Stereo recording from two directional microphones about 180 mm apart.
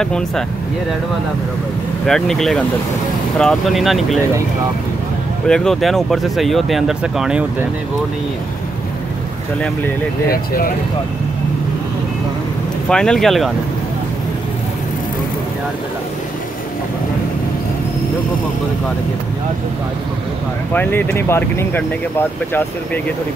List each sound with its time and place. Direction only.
2.0 s speech: 5° left (ahead or behind)
5.5 s speech: 5° left (ahead or behind)
10.3 s speech: 55° left (ahead or behind)
12.8 s speech: 5° left (ahead or behind)
20.7 s speech: 10° left (ahead or behind)